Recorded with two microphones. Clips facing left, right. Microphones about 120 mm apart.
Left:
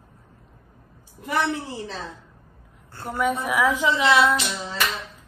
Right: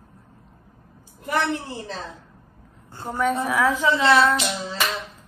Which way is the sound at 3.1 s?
15° left (ahead or behind).